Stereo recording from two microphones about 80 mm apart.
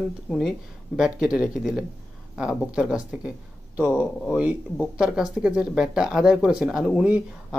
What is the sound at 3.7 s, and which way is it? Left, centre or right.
Speech, right.